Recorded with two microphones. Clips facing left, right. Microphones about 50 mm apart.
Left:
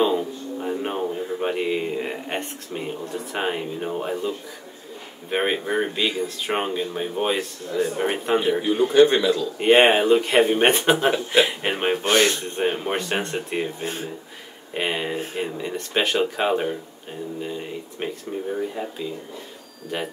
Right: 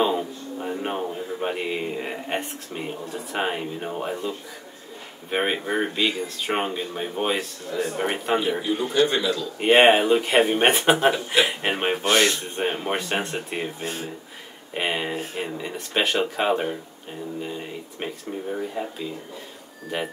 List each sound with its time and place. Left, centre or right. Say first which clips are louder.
0.0 s speech: left 2 dB; centre
5.3 s speech: left 1 dB; centre
8.5 s speech: left 6 dB; centre
9.6 s speech: even; centre
12.0 s speech: left 1 dB; left
12.4 s speech: left 2 dB; centre